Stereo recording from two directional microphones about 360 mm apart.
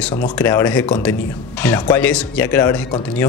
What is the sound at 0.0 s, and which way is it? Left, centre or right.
A man's voice, centre.